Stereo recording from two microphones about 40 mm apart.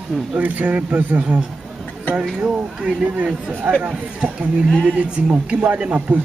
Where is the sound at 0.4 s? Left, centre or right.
Right.